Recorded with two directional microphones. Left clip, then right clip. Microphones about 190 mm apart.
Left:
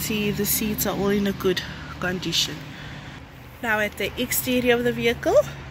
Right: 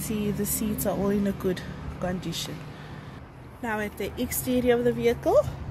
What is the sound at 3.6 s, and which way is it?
Speech, 5° right (ahead or behind).